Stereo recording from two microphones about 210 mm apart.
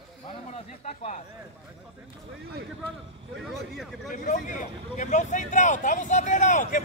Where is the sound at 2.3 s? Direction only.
55° right (ahead or behind).